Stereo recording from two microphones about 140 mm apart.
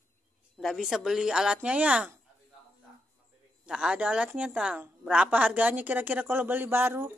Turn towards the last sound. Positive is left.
turn(degrees=-15)  # may be behind; listen again after turning